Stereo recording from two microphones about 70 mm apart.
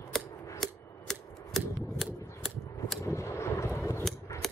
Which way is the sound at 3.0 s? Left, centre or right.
Left.